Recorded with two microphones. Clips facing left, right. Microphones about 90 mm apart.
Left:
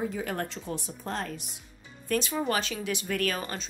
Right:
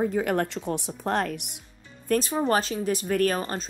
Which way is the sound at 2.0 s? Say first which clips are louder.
Right 4 dB; 40° right (ahead or behind).